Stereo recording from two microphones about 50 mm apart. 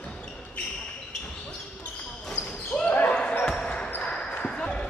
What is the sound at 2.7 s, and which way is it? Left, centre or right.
Basketball bounce, centre.